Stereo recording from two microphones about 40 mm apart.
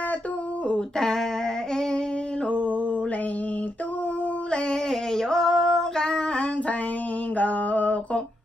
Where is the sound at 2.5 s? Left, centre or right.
Left.